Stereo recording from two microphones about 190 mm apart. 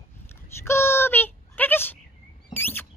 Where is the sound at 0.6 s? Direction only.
10° left (ahead or behind).